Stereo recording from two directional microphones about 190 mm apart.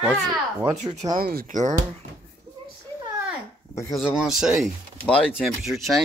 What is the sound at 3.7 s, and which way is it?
Speech, 15° left (ahead or behind).